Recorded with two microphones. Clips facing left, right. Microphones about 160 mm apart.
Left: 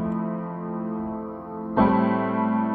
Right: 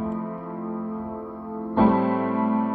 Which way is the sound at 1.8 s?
20° right (ahead or behind).